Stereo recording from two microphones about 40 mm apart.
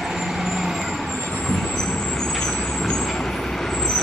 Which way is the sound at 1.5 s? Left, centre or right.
Centre.